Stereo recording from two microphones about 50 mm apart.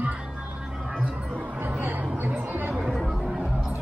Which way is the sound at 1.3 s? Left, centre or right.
Right.